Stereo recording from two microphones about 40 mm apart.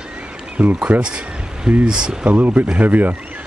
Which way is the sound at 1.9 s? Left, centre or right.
Right.